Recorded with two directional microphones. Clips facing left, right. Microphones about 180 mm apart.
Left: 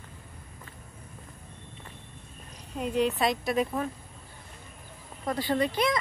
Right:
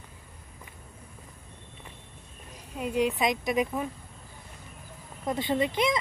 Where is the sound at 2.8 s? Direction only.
10° right (ahead or behind).